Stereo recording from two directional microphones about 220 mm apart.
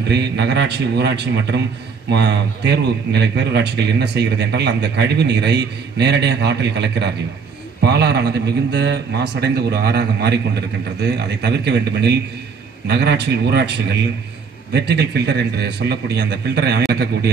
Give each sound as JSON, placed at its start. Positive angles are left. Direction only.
{"t": 0.1, "sound": "a man's voice", "side_deg": -50}